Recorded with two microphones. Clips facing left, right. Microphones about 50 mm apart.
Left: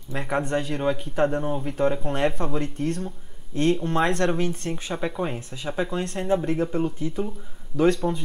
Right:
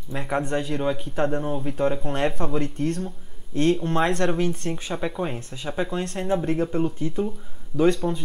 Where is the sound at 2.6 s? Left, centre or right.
Left.